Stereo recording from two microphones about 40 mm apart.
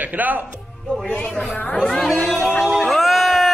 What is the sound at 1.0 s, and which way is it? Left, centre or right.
Speech, left.